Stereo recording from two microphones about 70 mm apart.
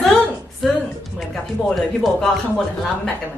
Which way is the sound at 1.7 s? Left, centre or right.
Centre.